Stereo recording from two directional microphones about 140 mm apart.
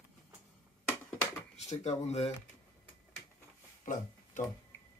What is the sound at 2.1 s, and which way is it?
Speech, 50° left (ahead or behind).